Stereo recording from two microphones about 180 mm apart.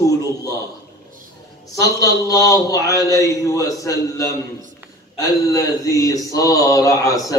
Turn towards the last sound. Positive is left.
turn(degrees=20)  # may be behind; listen again after turning